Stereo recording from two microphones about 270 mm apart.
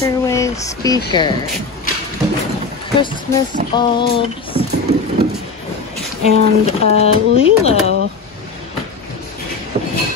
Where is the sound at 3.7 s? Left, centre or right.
Centre.